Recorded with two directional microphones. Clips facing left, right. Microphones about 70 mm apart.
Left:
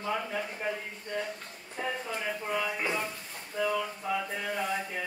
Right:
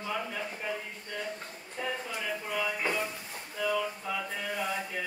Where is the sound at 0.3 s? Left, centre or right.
Centre.